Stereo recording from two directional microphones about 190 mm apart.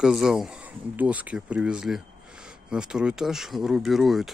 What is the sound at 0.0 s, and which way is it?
Speech, centre (ahead or behind).